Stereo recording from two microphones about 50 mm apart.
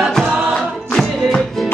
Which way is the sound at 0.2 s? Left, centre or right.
Centre.